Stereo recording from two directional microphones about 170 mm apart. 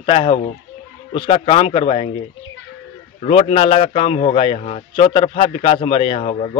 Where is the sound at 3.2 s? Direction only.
35° left (ahead or behind).